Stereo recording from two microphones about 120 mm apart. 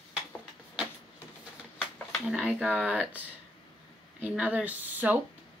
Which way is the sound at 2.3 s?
10° right (ahead or behind).